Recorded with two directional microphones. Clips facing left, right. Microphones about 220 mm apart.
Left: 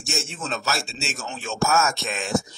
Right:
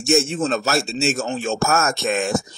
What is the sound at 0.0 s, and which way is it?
A man's voice, 50° right (ahead or behind).